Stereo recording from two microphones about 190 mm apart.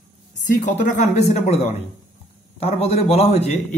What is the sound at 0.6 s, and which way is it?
Speech, 40° left (ahead or behind).